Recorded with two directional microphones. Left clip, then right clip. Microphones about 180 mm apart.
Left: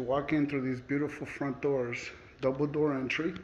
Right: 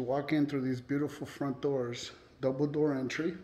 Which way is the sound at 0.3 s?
15° right (ahead or behind).